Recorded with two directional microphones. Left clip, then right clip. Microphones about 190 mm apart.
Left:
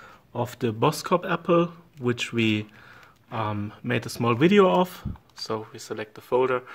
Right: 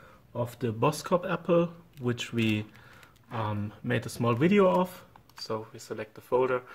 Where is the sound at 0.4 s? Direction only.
45° left (ahead or behind).